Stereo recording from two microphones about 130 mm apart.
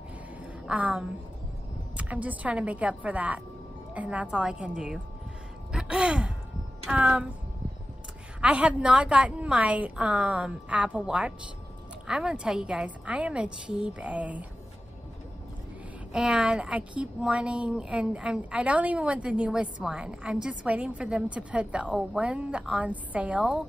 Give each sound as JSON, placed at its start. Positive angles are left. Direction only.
{"t": 0.7, "sound": "a woman's voice", "side_deg": -10}
{"t": 8.4, "sound": "a woman's voice", "side_deg": -10}
{"t": 16.1, "sound": "a woman's voice", "side_deg": -5}